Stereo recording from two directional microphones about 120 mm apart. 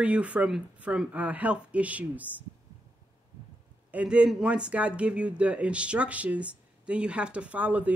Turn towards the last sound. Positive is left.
turn(degrees=-15)  # may be behind; listen again after turning